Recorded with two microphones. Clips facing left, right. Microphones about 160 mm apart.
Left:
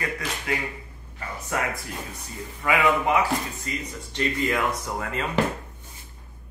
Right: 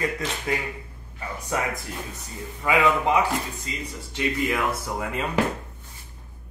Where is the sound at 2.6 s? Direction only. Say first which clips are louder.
Right 1 dB; 20° right (ahead or behind).